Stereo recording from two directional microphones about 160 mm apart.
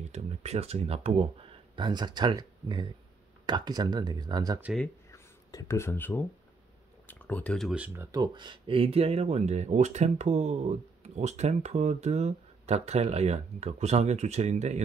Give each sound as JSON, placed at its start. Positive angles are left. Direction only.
{"t": 0.1, "sound": "speech", "side_deg": -45}
{"t": 1.8, "sound": "speech", "side_deg": -25}
{"t": 5.1, "sound": "speech", "side_deg": 20}
{"t": 8.2, "sound": "speech", "side_deg": -30}